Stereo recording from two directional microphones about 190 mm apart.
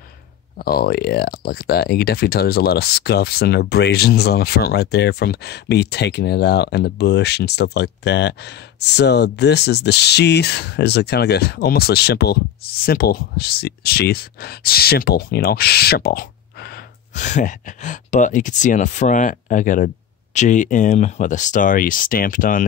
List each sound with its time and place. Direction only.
0.6 s speech: 50° left (ahead or behind)
17.1 s speech: 40° left (ahead or behind)